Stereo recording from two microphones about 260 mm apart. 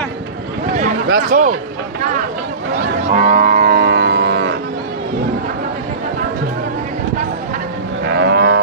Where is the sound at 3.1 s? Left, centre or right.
Right.